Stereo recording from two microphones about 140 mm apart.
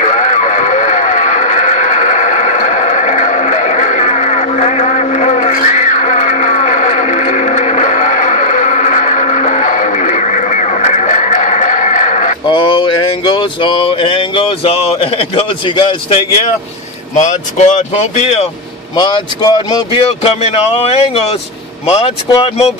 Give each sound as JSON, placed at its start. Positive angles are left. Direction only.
{"t": 0.0, "sound": "radio", "side_deg": 60}
{"t": 12.4, "sound": "a sound", "side_deg": 35}
{"t": 17.1, "sound": "speech", "side_deg": 60}
{"t": 18.9, "sound": "speech", "side_deg": 35}
{"t": 20.0, "sound": "speech", "side_deg": 45}